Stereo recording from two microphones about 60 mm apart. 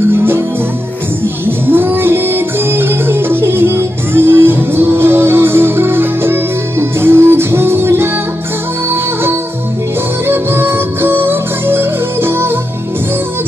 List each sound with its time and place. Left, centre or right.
1.4 s music: right
10.2 s music: right